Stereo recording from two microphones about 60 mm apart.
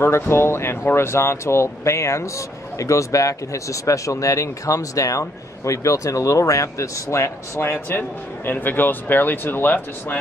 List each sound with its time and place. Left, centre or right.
0.0 s speech: left
8.5 s speech: left